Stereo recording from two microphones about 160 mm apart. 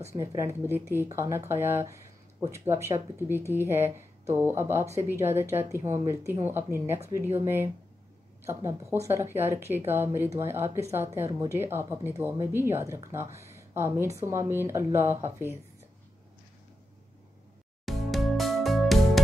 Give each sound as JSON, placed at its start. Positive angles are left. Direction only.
{"t": 0.1, "sound": "speech", "side_deg": -20}
{"t": 9.0, "sound": "speech", "side_deg": -15}
{"t": 17.8, "sound": "music", "side_deg": 0}